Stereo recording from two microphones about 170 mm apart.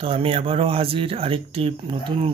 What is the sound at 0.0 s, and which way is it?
Speech, 35° right (ahead or behind).